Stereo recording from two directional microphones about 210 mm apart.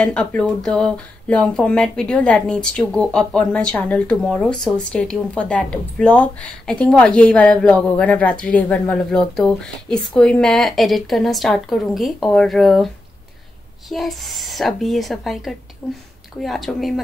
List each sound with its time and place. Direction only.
0.0 s speech: 5° left (ahead or behind)